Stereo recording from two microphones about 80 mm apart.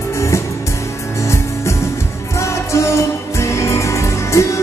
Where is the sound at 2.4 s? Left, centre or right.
Left.